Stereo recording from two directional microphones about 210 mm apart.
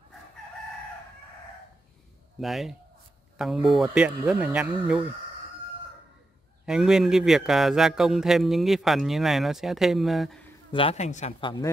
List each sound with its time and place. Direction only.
2.4 s a man's voice: centre (ahead or behind)
6.6 s a man's voice: 5° right (ahead or behind)
10.7 s speech: 25° left (ahead or behind)